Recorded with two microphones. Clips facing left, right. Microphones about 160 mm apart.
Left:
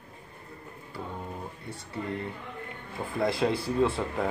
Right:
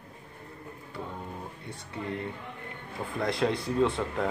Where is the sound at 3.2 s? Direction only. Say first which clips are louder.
Left 2 dB; 5° left (ahead or behind).